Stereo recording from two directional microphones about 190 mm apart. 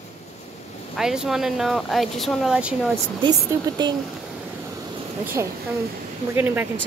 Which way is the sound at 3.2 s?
25° right (ahead or behind).